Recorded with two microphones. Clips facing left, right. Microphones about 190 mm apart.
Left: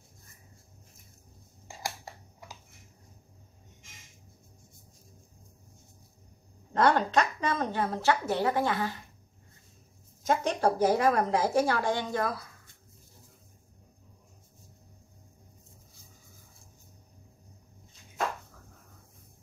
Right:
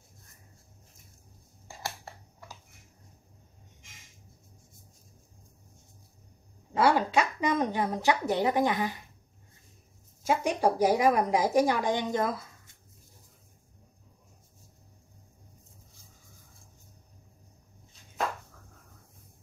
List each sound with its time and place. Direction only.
6.7 s a woman's voice: 5° right (ahead or behind)
10.2 s a woman's voice: 10° right (ahead or behind)